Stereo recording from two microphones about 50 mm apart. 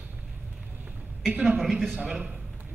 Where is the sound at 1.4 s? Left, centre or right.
Centre.